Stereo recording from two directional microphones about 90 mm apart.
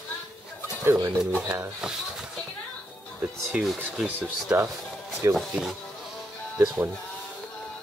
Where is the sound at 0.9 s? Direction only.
35° right (ahead or behind).